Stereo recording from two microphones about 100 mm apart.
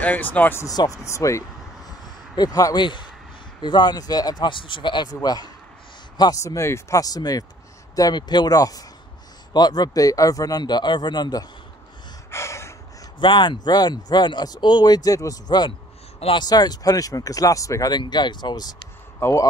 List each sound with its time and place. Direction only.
0.0 s speech: 15° left (ahead or behind)
0.7 s speech: 35° left (ahead or behind)
6.3 s speech: 30° left (ahead or behind)
12.3 s gasp: 30° left (ahead or behind)
13.2 s speech: 50° left (ahead or behind); by 17.9 s 35° left (ahead or behind)
17.9 s speech: 50° left (ahead or behind)
19.1 s speech: 25° left (ahead or behind)